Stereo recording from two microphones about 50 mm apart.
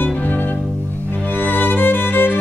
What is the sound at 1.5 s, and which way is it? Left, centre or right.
Music, left.